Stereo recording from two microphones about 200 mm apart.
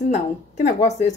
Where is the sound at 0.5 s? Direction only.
35° left (ahead or behind).